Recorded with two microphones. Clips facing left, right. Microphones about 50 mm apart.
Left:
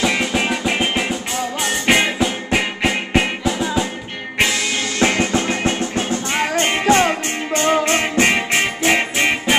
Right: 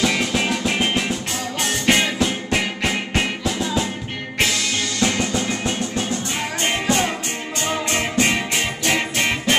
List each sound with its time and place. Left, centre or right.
0.0 s music: centre
4.9 s music: left
9.1 s music: centre